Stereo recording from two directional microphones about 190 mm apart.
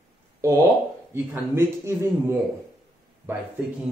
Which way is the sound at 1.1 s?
10° right (ahead or behind).